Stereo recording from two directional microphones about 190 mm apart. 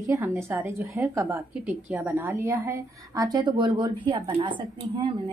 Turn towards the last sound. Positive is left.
turn(degrees=-25)  # may be behind; listen again after turning